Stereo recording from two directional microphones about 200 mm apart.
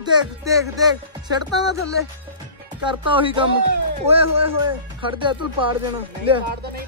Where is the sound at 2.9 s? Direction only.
25° right (ahead or behind).